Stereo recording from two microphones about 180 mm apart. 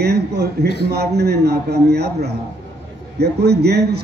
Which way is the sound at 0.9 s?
65° right (ahead or behind).